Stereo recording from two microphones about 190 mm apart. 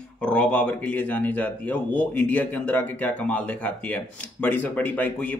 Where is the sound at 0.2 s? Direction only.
5° left (ahead or behind).